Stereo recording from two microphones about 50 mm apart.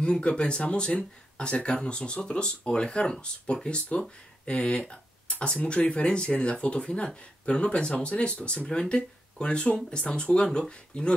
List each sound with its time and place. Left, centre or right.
0.0 s speech: centre